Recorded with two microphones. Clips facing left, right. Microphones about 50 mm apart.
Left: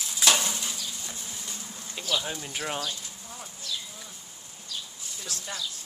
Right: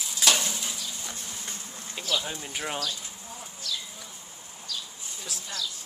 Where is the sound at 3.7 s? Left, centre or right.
Left.